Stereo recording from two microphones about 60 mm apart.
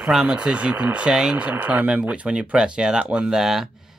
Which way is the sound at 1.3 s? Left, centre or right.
Right.